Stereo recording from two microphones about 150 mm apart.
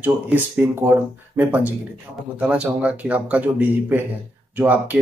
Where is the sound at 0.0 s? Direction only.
10° right (ahead or behind).